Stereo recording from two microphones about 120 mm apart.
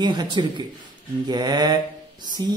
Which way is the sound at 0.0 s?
40° right (ahead or behind).